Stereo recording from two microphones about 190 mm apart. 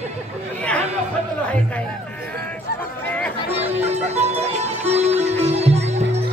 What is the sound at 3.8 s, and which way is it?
Music, 35° right (ahead or behind).